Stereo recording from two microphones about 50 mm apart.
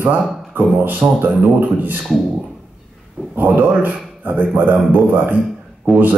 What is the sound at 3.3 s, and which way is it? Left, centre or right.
A man's voice, right.